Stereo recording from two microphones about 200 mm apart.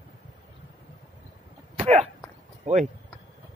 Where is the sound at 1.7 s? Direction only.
30° right (ahead or behind).